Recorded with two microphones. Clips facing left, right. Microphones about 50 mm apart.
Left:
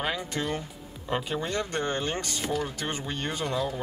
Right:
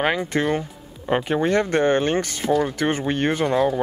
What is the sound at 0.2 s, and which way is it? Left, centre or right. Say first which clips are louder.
Speech: right 9 dB; right.